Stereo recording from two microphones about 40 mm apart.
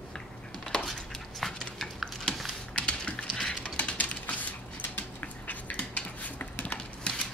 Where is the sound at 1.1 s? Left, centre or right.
Centre.